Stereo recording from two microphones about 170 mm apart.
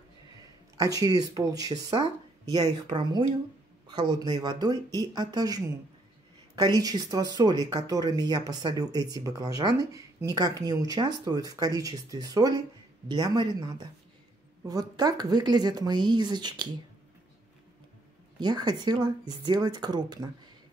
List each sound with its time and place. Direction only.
0.7 s speech: 20° right (ahead or behind)
6.8 s speech: 20° right (ahead or behind)
18.4 s speech: 25° right (ahead or behind)